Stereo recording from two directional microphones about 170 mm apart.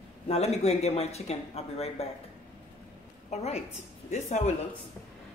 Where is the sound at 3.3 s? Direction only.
40° left (ahead or behind).